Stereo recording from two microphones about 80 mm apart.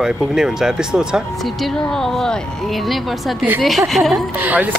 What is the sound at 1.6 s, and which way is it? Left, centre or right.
A woman's voice, centre.